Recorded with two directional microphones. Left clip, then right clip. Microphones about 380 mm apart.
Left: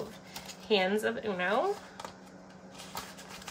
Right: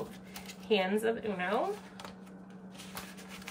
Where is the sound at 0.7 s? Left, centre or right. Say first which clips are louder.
Left 1 dB; centre.